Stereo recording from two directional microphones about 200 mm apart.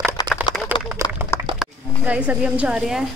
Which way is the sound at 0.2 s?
20° left (ahead or behind).